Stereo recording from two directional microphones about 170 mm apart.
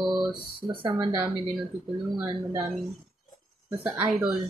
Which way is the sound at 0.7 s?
30° right (ahead or behind).